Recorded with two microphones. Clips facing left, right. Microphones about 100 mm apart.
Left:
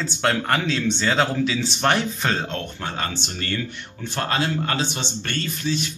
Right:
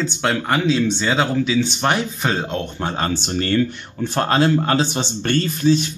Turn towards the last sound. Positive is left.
turn(degrees=-35)  # may be behind; listen again after turning